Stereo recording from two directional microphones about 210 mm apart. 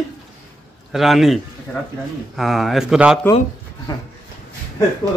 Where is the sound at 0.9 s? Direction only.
Centre (ahead or behind).